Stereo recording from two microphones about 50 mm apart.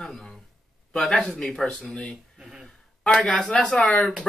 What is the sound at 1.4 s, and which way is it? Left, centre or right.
Speech, centre.